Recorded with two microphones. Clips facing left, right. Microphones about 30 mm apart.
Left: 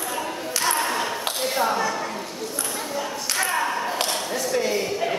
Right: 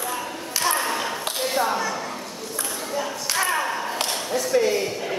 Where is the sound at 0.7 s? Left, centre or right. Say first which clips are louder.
Even; centre.